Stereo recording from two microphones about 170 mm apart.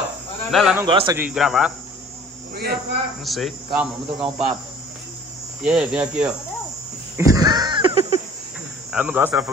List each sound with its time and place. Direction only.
0.5 s speech: centre (ahead or behind)
0.8 s a man's voice: 30° right (ahead or behind)
1.1 s speech: 5° right (ahead or behind)
2.5 s a sound: 65° right (ahead or behind)
3.3 s speech: centre (ahead or behind)
5.6 s speech: 5° right (ahead or behind)
7.2 s goat: 20° right (ahead or behind)
8.9 s speech: 10° right (ahead or behind)